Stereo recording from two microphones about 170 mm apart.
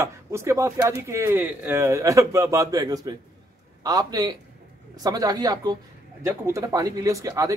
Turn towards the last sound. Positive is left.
turn(degrees=-20)  # may be behind; listen again after turning